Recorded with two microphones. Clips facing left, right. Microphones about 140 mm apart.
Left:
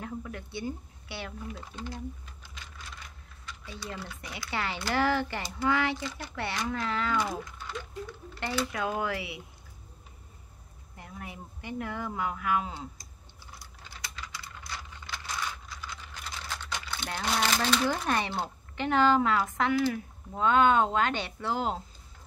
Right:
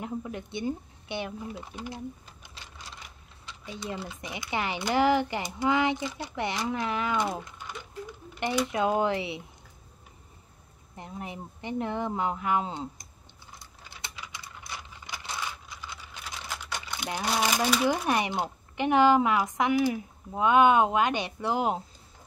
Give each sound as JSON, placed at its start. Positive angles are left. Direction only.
{"t": 0.0, "sound": "speech", "side_deg": -20}
{"t": 3.4, "sound": "speech", "side_deg": -20}
{"t": 11.0, "sound": "speech", "side_deg": -25}
{"t": 14.1, "sound": "computer keyboard", "side_deg": -15}
{"t": 16.3, "sound": "speech", "side_deg": -10}